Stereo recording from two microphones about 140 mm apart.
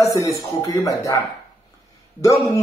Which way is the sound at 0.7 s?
25° left (ahead or behind).